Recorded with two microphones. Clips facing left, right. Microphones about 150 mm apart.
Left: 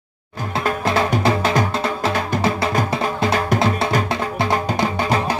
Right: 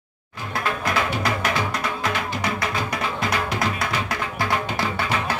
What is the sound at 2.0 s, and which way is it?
Music, 30° left (ahead or behind).